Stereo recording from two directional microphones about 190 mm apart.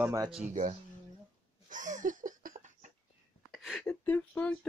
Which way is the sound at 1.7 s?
40° right (ahead or behind).